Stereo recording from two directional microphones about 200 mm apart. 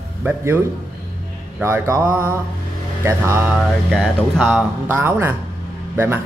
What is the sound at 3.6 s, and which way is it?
Speech, centre (ahead or behind).